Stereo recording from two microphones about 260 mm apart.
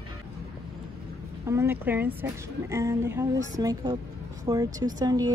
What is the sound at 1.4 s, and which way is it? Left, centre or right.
Speech, centre.